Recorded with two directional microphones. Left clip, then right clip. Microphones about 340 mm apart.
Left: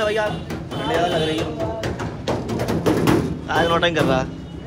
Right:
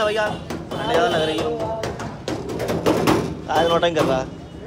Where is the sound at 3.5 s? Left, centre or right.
Centre.